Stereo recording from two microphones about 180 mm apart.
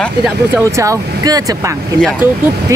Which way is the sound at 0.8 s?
20° right (ahead or behind).